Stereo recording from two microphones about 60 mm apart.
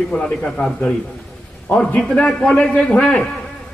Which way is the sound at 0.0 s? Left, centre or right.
Centre.